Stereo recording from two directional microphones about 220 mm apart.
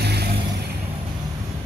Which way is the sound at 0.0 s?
45° right (ahead or behind).